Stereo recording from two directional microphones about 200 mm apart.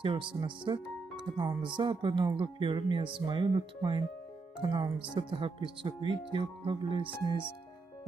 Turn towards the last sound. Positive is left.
turn(degrees=-25)  # may be behind; listen again after turning